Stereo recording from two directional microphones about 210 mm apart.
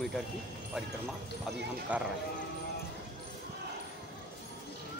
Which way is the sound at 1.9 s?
5° right (ahead or behind).